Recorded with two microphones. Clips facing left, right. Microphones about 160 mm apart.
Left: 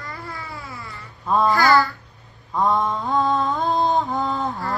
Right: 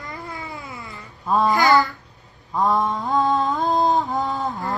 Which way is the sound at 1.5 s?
20° right (ahead or behind).